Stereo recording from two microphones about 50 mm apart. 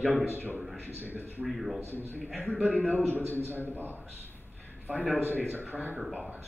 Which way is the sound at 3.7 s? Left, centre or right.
Right.